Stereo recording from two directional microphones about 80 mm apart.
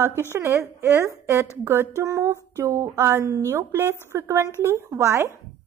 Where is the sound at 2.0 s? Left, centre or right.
Right.